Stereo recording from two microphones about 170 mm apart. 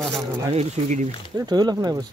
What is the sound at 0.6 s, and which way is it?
Speech, 45° right (ahead or behind).